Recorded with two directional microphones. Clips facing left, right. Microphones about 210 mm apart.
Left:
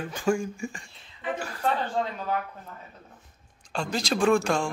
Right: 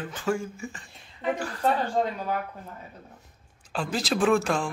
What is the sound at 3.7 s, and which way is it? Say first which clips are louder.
Speech: even; 5° right (ahead or behind).